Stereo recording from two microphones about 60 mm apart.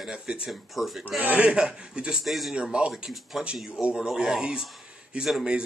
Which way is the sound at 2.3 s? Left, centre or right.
Centre.